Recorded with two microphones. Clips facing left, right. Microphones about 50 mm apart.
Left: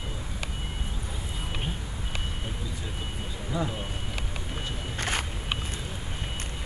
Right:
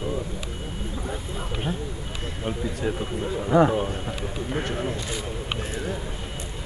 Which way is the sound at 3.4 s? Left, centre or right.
Right.